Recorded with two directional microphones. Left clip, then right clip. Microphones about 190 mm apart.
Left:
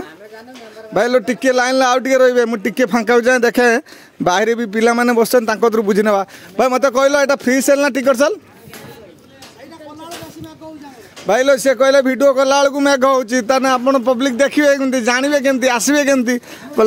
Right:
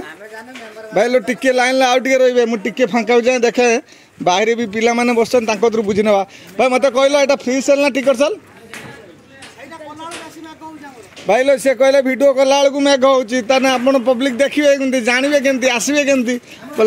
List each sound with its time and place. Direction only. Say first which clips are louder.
0.9 s a man's voice: even; 20° left (ahead or behind); by 8.4 s 40° left (ahead or behind)
11.2 s a man's voice: even; 10° left (ahead or behind)
12.7 s a man's voice: right 1 dB; 35° left (ahead or behind)
13.7 s speech: even; 15° left (ahead or behind); by 16.8 s 35° left (ahead or behind)